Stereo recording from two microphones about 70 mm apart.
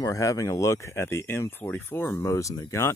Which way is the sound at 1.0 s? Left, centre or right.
Left.